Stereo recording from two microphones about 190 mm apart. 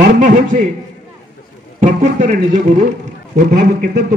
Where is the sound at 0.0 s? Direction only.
45° right (ahead or behind).